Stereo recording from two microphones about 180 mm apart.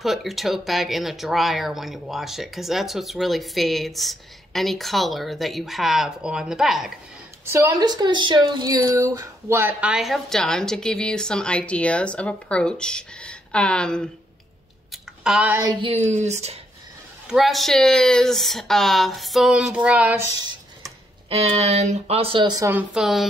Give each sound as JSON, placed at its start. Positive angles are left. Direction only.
{"t": 0.0, "sound": "speech", "side_deg": 0}
{"t": 7.4, "sound": "speech", "side_deg": -15}
{"t": 14.9, "sound": "chewing", "side_deg": -5}
{"t": 15.6, "sound": "speech", "side_deg": -30}
{"t": 17.3, "sound": "speech", "side_deg": 0}
{"t": 20.3, "sound": "a sound", "side_deg": -20}
{"t": 21.3, "sound": "speech", "side_deg": -35}